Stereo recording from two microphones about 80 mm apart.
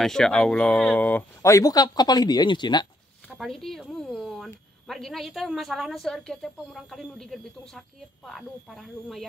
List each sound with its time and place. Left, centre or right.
0.0 s speech: centre
1.4 s speech: left
3.3 s speech: centre